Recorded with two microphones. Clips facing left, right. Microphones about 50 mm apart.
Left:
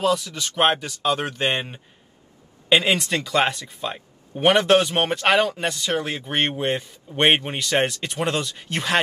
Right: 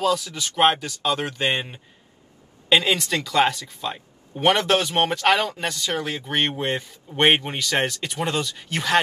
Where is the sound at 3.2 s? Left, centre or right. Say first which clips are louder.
Right 1 dB; centre.